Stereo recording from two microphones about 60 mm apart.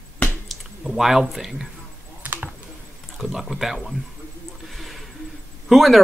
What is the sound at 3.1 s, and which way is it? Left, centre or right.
Speech, centre.